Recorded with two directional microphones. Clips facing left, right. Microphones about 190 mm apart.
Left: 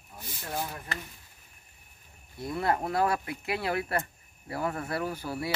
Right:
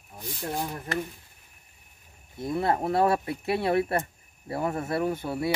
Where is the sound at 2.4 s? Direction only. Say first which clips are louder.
Right 3 dB; 25° right (ahead or behind).